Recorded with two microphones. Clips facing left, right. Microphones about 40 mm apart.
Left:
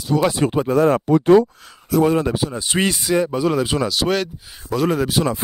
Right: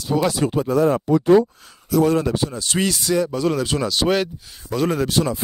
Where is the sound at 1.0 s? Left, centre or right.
Left.